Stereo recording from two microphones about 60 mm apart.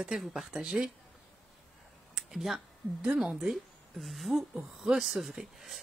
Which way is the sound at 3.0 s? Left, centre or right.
Centre.